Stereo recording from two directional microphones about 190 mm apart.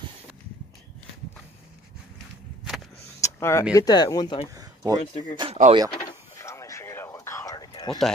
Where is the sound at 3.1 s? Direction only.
15° left (ahead or behind).